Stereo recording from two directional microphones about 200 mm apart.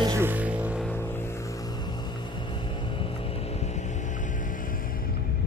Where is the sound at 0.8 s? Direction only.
10° left (ahead or behind); by 5.0 s 45° left (ahead or behind).